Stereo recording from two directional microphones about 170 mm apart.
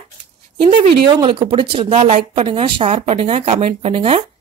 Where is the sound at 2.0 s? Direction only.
40° right (ahead or behind).